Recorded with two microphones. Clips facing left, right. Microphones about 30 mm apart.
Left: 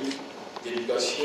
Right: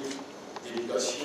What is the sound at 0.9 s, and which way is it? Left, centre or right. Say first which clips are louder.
Speech: left 1 dB; left.